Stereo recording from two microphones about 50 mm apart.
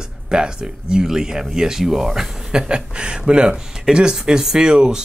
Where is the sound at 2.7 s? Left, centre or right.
Centre.